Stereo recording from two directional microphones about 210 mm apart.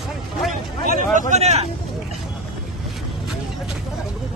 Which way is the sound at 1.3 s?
30° right (ahead or behind).